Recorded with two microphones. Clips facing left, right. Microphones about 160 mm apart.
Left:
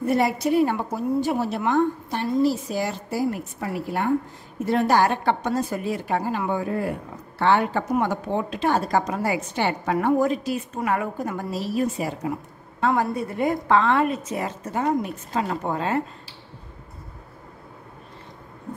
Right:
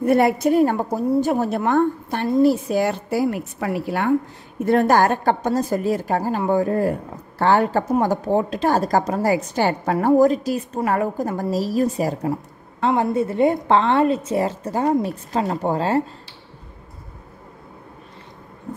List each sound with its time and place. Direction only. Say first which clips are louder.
0.0 s a woman's voice: right 5 dB; 55° right (ahead or behind); by 4.1 s 85° right
4.6 s a woman's voice: right 4 dB; 50° right (ahead or behind)
12.8 s a woman's voice: right 4 dB; 25° right (ahead or behind)